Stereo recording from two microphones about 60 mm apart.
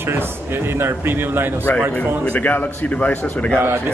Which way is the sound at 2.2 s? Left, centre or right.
Left.